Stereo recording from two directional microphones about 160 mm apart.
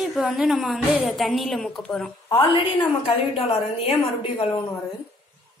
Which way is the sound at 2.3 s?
30° left (ahead or behind).